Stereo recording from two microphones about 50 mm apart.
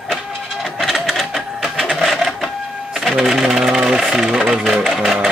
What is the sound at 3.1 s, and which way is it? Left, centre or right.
Speech, centre.